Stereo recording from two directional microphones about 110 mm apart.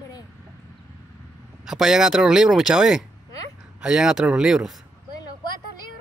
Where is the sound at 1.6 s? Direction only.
5° right (ahead or behind).